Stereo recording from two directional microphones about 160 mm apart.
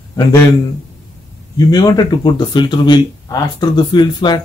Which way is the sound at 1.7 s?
25° left (ahead or behind).